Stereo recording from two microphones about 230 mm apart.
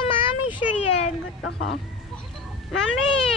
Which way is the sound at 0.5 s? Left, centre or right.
Left.